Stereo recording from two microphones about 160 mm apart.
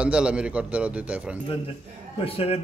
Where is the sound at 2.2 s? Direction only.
35° left (ahead or behind).